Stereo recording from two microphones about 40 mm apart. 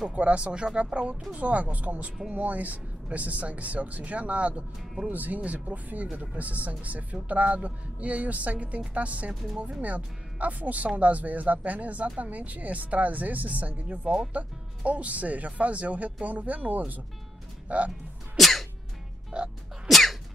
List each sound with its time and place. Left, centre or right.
0.1 s speech: right
18.3 s cough: centre
19.3 s music: right
19.9 s sneeze: centre